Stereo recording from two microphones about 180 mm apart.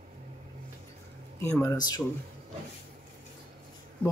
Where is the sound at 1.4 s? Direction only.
15° left (ahead or behind).